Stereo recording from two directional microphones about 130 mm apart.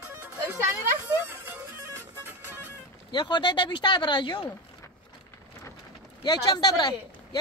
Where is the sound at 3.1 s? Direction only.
35° left (ahead or behind).